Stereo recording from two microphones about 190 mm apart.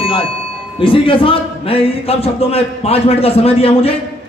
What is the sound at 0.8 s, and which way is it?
A man's voice, 30° left (ahead or behind).